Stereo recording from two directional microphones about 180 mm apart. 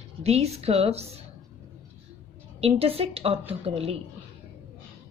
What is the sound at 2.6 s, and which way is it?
A woman's voice, 35° right (ahead or behind).